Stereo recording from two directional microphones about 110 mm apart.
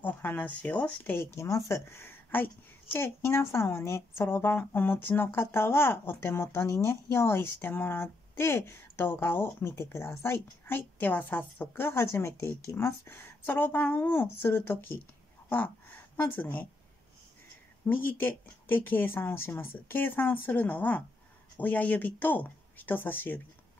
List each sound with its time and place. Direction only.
0.0 s speech: 15° left (ahead or behind)
16.2 s speech: 15° left (ahead or behind)
17.8 s speech: 15° left (ahead or behind)